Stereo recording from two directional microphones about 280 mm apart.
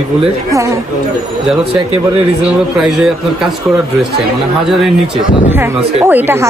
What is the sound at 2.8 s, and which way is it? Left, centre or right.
Speech, centre.